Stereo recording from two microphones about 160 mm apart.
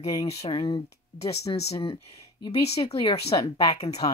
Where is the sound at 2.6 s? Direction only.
40° left (ahead or behind).